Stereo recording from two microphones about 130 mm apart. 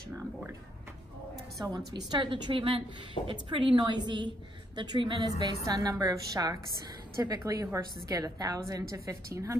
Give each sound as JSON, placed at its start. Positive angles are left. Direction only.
{"t": 1.6, "sound": "a woman's voice", "side_deg": -30}